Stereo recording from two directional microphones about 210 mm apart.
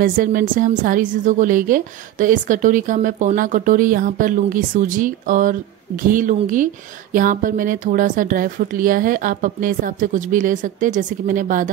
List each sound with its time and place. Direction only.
0.0 s speech: 40° right (ahead or behind)